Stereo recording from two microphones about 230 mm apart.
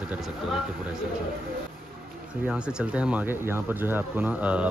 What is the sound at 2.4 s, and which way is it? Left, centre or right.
Speech, centre.